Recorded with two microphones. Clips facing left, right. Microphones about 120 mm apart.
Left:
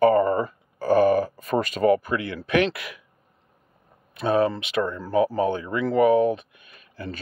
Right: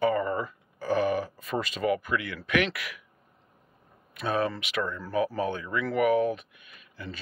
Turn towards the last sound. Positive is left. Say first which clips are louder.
# left 6 dB
turn(degrees=40)  # may be behind; listen again after turning